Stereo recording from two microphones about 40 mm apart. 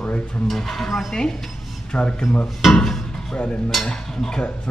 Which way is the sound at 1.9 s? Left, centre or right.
Left.